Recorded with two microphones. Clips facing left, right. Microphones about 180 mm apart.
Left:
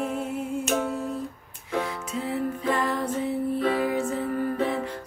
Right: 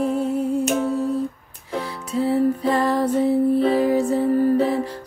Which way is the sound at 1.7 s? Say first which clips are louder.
Right 3 dB; 35° right (ahead or behind).